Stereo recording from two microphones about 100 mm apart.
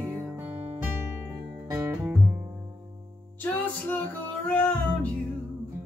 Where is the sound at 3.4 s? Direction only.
20° left (ahead or behind).